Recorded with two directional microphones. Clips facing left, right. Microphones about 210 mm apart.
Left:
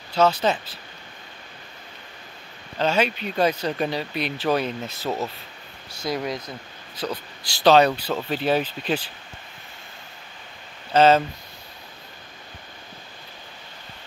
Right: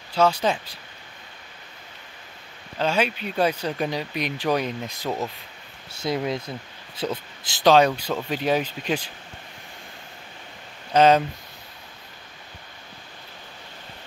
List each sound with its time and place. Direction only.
0.1 s speech: 10° right (ahead or behind)
2.8 s speech: 10° right (ahead or behind)
6.0 s speech: 25° right (ahead or behind)
7.4 s speech: 15° right (ahead or behind)
10.9 s speech: 15° right (ahead or behind)